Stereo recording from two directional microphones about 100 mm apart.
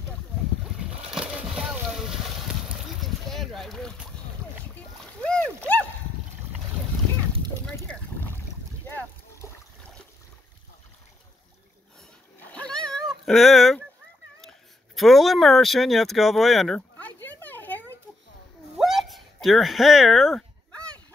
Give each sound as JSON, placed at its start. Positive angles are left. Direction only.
{"t": 0.7, "sound": "splash", "side_deg": -5}
{"t": 3.0, "sound": "boat", "side_deg": 0}
{"t": 4.7, "sound": "splash", "side_deg": 10}
{"t": 7.9, "sound": "boat", "side_deg": 20}
{"t": 12.4, "sound": "cat", "side_deg": 15}
{"t": 15.0, "sound": "speech", "side_deg": 0}
{"t": 17.0, "sound": "a sound", "side_deg": 20}
{"t": 18.8, "sound": "a sound", "side_deg": 0}
{"t": 20.7, "sound": "a sound", "side_deg": 10}